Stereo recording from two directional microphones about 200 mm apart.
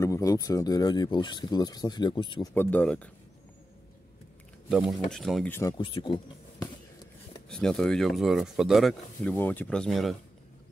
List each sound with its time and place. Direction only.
0.0 s speech: 15° left (ahead or behind)
2.5 s speech: 10° left (ahead or behind)
4.6 s speech: 5° right (ahead or behind); by 5.8 s 15° left (ahead or behind)
5.8 s speech: 25° left (ahead or behind)
7.4 s speech: 5° left (ahead or behind)